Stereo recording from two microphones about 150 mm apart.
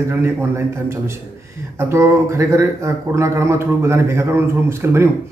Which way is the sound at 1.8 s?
20° right (ahead or behind).